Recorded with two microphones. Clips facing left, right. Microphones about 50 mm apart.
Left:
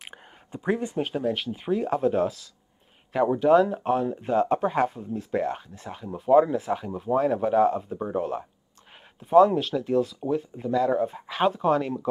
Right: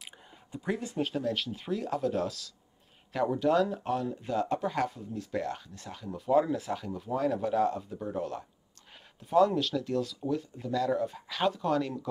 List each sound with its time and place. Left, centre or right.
0.5 s speech: left